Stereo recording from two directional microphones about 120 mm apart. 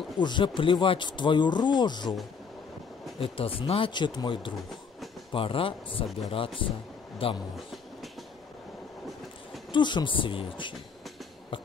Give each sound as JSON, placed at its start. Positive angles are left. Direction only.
{"t": 0.2, "sound": "speech", "side_deg": 40}
{"t": 3.2, "sound": "speech", "side_deg": 50}
{"t": 7.5, "sound": "train", "side_deg": 0}
{"t": 9.7, "sound": "speech", "side_deg": 40}